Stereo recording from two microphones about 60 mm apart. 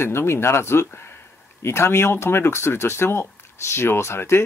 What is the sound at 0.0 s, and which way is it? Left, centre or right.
Speech, left.